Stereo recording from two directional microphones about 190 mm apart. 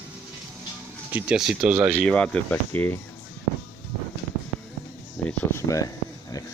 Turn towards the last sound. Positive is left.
turn(degrees=15)  # may be behind; listen again after turning